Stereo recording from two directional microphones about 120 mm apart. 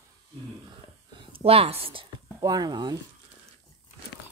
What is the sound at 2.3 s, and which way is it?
Speech, 35° right (ahead or behind).